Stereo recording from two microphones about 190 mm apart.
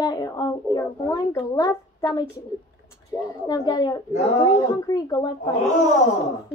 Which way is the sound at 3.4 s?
20° left (ahead or behind).